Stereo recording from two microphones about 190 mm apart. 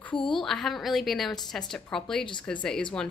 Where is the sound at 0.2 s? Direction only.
Centre (ahead or behind).